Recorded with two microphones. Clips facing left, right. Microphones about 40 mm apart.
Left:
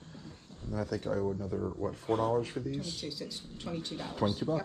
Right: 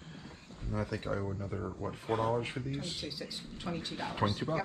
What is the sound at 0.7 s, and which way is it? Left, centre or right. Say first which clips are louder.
Speech: left 2 dB; right.